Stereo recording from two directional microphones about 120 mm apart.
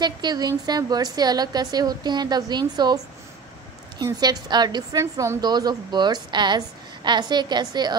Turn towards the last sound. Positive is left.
turn(degrees=-35)  # may be behind; listen again after turning